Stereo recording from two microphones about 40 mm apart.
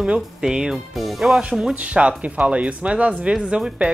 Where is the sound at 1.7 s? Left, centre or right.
Right.